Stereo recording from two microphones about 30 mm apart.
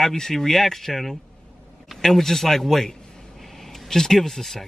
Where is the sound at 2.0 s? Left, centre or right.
Centre.